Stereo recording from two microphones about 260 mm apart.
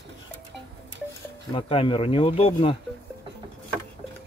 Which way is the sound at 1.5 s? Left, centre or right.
Left.